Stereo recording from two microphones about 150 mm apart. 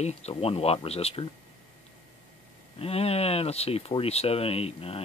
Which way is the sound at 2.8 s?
40° left (ahead or behind).